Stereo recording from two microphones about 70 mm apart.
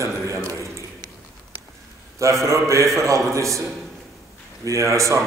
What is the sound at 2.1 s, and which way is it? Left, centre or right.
A man's voice, right.